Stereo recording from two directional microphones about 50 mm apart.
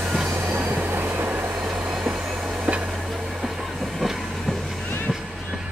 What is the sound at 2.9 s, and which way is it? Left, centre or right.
Train, centre.